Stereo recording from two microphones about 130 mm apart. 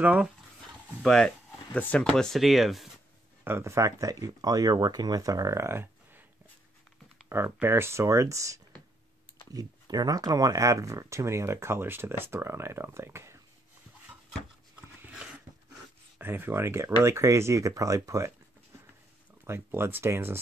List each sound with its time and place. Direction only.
0.0 s speech: 10° right (ahead or behind)
1.0 s speech: 5° left (ahead or behind)
3.4 s speech: 20° right (ahead or behind)
7.2 s speech: 20° right (ahead or behind)
16.2 s speech: 15° right (ahead or behind)
19.4 s speech: 20° right (ahead or behind)